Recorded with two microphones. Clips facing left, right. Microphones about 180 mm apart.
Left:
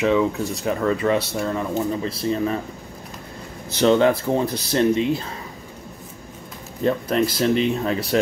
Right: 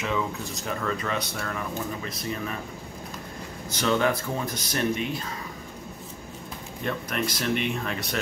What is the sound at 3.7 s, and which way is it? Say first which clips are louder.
Speech: left 8 dB; 25° left (ahead or behind).